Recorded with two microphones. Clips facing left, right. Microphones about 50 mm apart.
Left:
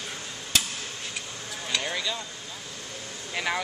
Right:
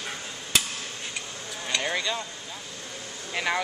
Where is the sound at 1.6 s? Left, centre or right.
Centre.